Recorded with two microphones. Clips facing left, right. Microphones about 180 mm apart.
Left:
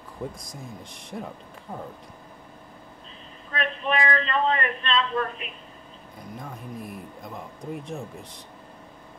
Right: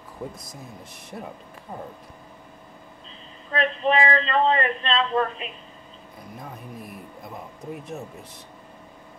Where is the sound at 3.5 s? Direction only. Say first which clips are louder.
Right 5 dB; 30° right (ahead or behind).